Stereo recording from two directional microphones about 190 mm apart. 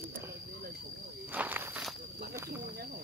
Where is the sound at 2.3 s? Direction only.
15° right (ahead or behind).